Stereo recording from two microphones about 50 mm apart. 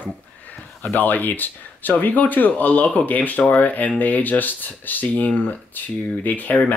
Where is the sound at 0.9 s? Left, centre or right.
Left.